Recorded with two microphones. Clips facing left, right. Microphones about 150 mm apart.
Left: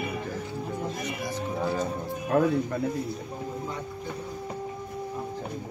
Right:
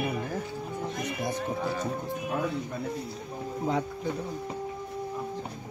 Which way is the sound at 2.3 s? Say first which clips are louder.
Left 9 dB; 55° left (ahead or behind).